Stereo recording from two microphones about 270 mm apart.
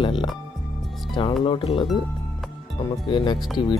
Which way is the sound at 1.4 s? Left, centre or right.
Centre.